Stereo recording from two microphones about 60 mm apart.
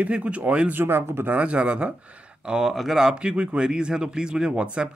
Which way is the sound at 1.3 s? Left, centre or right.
Right.